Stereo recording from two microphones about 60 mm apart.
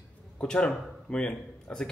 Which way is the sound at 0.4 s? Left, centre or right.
Centre.